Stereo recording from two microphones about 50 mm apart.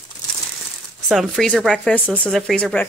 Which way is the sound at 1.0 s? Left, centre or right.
Centre.